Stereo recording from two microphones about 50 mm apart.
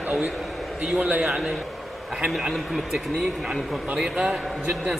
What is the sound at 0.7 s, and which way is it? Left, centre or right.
Speech, right.